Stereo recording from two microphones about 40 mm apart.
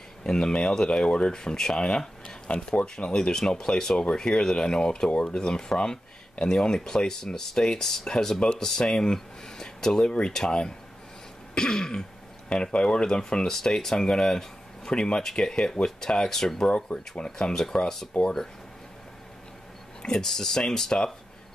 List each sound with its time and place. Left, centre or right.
0.2 s speech: centre
8.4 s speech: left
8.6 s speech: centre
13.5 s speech: centre
16.6 s speech: left
20.0 s speech: centre